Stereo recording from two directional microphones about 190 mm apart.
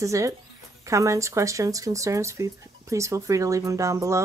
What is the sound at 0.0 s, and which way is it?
Speech, 15° right (ahead or behind).